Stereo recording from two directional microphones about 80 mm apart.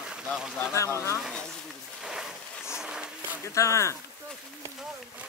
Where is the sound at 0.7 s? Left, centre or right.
Left.